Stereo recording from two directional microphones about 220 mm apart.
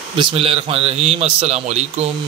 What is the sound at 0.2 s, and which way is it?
A man's voice, 25° right (ahead or behind).